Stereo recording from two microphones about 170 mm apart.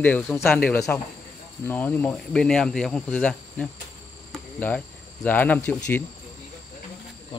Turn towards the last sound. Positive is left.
turn(degrees=10)  # may be behind; listen again after turning